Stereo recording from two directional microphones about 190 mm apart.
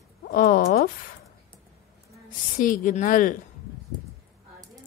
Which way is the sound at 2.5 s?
45° left (ahead or behind).